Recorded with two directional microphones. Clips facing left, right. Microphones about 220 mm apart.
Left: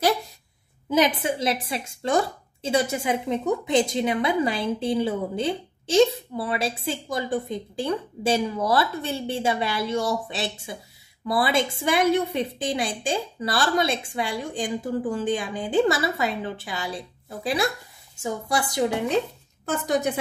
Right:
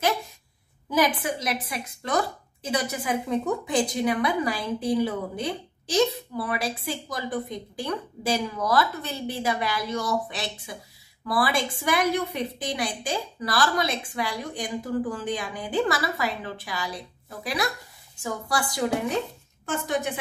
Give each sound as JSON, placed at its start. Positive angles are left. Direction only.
{"t": 0.8, "sound": "speech", "side_deg": 25}